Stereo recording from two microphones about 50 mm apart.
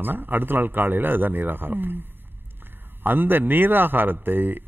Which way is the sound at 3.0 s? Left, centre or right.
Right.